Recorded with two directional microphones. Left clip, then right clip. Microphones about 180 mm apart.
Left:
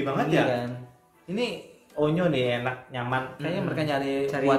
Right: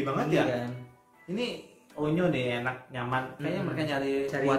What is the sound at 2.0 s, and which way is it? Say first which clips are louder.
Speech: left 4 dB; 20° left (ahead or behind).